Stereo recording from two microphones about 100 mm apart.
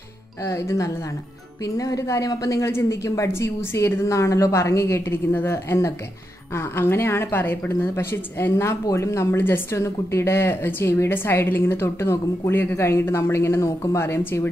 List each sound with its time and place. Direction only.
0.5 s speech: 30° left (ahead or behind)